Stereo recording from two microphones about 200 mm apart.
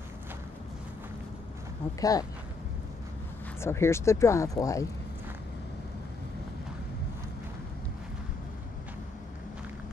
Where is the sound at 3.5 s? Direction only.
15° left (ahead or behind).